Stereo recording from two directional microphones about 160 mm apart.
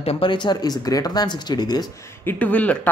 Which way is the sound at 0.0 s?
35° left (ahead or behind).